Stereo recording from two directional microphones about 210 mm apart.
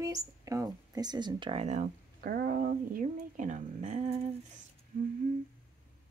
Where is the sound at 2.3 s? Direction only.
45° right (ahead or behind).